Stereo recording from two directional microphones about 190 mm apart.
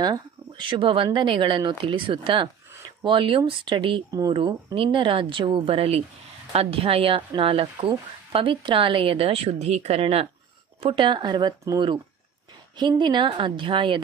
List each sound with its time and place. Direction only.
0.0 s a woman's voice: 25° right (ahead or behind)